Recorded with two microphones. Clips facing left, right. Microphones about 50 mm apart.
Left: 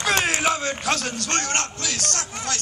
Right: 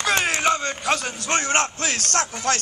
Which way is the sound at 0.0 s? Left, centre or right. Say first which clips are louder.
Right 1 dB; centre.